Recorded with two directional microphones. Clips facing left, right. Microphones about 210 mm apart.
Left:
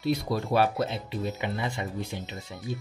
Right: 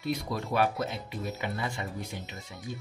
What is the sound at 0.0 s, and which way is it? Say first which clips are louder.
Speech: left 5 dB; 35° left (ahead or behind).